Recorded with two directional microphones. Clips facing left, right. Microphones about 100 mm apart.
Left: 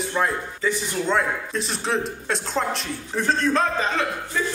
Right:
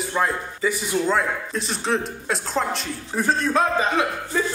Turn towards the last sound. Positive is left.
turn(degrees=-10)  # may be behind; listen again after turning